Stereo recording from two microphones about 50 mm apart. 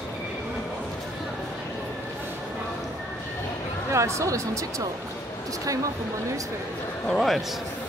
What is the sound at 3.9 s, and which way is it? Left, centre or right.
Speech, right.